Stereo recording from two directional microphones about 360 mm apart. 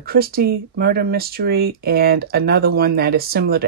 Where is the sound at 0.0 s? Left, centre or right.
Right.